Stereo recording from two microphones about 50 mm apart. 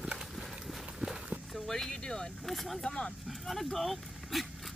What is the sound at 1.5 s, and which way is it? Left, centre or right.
Speech, centre.